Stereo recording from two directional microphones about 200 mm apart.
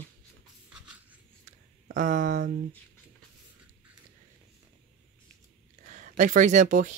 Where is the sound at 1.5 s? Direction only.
40° right (ahead or behind).